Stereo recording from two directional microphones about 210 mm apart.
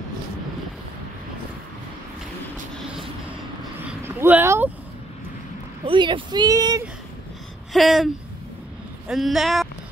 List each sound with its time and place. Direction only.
4.0 s vehicle: 10° right (ahead or behind)
5.9 s speech: 25° right (ahead or behind)
7.7 s speech: centre (ahead or behind)